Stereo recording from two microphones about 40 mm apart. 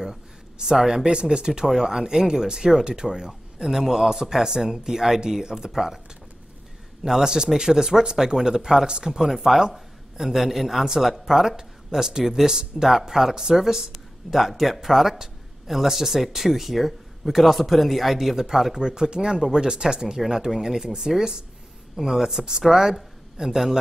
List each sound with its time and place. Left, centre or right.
0.0 s a man's voice: centre
7.0 s a man's voice: centre